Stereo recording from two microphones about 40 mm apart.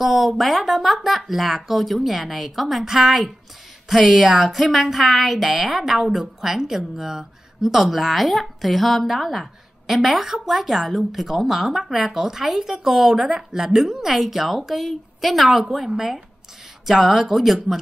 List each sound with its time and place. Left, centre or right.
0.0 s speech: centre